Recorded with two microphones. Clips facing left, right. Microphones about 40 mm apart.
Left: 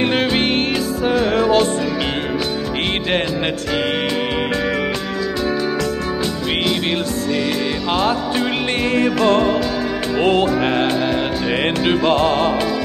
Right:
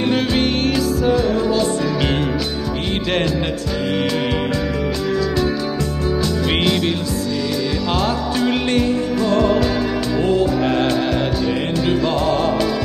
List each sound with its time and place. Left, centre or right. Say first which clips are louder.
0.0 s music: left 1 dB; left
1.1 s music: left 2 dB; left
7.9 s music: left 3 dB; left
8.9 s music: left 4 dB; left
10.1 s music: left 2 dB; left
11.8 s music: left 3 dB; left